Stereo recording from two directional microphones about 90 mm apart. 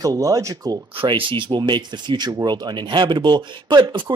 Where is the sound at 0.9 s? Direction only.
70° right (ahead or behind).